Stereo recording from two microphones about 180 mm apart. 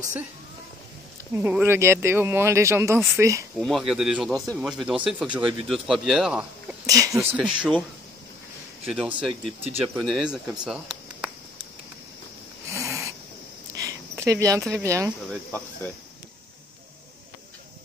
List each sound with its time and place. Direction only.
1.3 s speech: 10° right (ahead or behind)
3.5 s speech: centre (ahead or behind)
6.9 s speech: 20° right (ahead or behind)
7.3 s speech: 5° right (ahead or behind)
8.8 s speech: centre (ahead or behind)
12.7 s a sound: 15° right (ahead or behind)
14.7 s speech: 15° right (ahead or behind)